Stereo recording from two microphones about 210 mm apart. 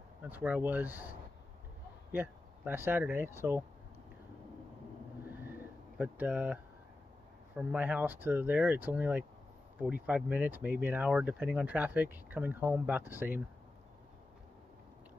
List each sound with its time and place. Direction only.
0.2 s speech: 10° right (ahead or behind)
2.1 s speech: 10° right (ahead or behind)
5.3 s a sound: 10° right (ahead or behind)
7.5 s speech: 10° right (ahead or behind)